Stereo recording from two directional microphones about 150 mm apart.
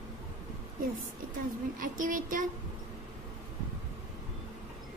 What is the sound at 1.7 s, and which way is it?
Speech, 65° right (ahead or behind).